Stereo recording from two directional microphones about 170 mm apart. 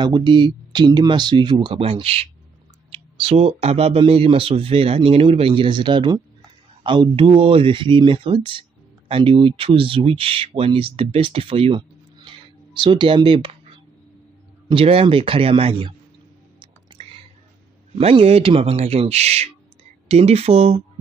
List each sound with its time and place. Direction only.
0.0 s speech: 25° right (ahead or behind)
16.5 s music: 30° right (ahead or behind)
17.9 s speech: 35° right (ahead or behind)